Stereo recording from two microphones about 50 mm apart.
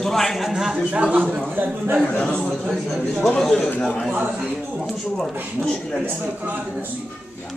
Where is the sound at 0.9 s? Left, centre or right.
Right.